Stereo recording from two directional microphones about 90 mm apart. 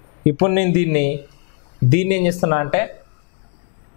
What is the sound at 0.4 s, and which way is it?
Speech, 10° left (ahead or behind).